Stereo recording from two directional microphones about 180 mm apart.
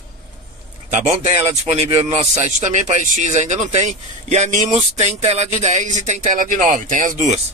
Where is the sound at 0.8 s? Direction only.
40° right (ahead or behind).